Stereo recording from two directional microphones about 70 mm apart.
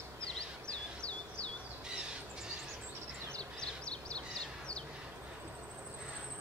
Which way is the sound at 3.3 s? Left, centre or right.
Centre.